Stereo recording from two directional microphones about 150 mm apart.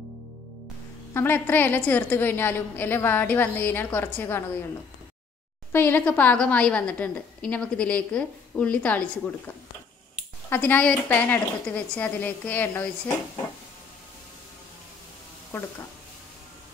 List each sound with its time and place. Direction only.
1.1 s a woman's voice: 15° left (ahead or behind)
5.7 s a woman's voice: 15° left (ahead or behind)
10.5 s a woman's voice: 10° left (ahead or behind)